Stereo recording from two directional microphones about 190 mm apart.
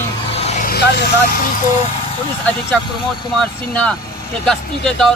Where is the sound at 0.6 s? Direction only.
55° left (ahead or behind).